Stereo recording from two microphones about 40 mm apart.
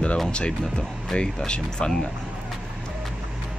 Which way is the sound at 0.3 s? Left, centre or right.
Left.